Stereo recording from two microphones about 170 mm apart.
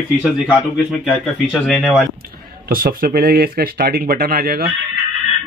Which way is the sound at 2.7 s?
60° right (ahead or behind).